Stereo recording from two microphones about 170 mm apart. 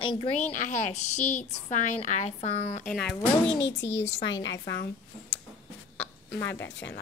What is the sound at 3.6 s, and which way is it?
Speech, 90° left.